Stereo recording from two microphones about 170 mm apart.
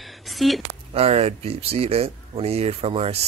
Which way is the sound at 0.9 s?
35° right (ahead or behind).